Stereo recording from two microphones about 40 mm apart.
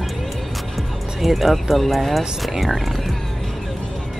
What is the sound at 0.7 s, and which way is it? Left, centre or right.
Speech, centre.